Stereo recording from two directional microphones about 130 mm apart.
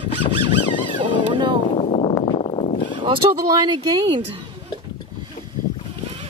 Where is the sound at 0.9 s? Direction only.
40° right (ahead or behind).